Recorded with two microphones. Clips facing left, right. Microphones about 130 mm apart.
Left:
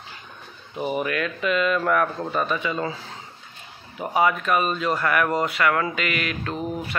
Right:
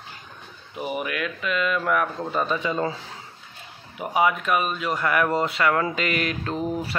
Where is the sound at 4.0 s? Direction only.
15° right (ahead or behind).